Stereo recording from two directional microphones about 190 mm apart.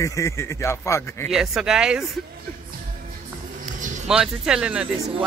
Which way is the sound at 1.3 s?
Centre (ahead or behind).